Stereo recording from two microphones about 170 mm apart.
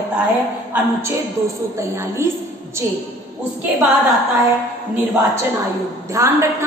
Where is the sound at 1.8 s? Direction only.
15° right (ahead or behind).